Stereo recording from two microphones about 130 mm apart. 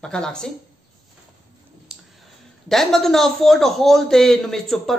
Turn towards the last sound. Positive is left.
turn(degrees=0)  # may be behind; listen again after turning